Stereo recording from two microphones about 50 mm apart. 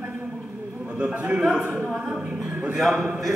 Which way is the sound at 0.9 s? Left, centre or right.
Right.